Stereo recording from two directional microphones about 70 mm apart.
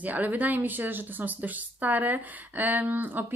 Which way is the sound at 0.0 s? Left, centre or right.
Right.